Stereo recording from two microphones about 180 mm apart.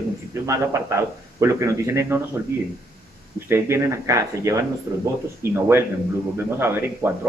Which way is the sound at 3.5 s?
15° right (ahead or behind).